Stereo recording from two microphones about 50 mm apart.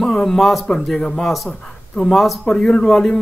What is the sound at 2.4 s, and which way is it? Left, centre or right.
Speech, centre.